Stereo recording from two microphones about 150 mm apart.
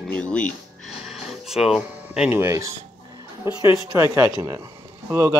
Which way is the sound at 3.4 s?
15° right (ahead or behind).